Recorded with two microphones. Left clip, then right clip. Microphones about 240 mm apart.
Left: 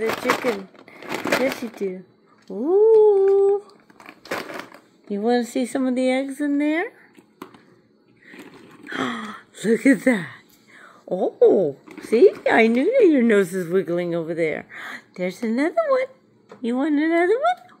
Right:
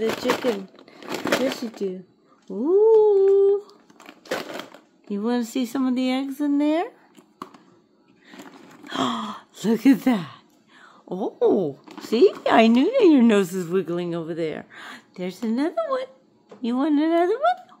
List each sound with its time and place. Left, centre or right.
0.2 s speech: centre
1.0 s a sound: centre
2.5 s humming: centre
4.0 s crushing: centre
5.2 s speech: centre
5.9 s speech: right
6.1 s speech: centre
8.3 s a sound: centre
11.9 s speech: centre